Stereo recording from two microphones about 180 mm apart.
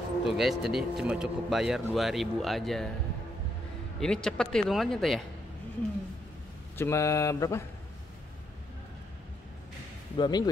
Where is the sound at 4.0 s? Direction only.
5° left (ahead or behind).